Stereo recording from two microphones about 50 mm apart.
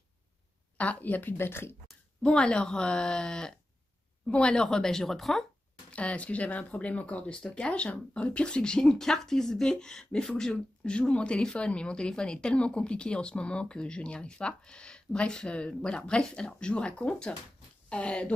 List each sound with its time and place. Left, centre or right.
0.7 s speech: left
2.2 s speech: centre
5.9 s speech: left